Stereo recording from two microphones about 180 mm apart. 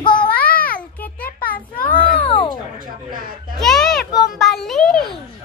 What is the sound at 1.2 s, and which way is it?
Speech, 55° left (ahead or behind).